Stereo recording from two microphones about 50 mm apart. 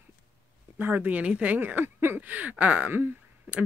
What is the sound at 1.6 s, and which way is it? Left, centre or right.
Speech, right.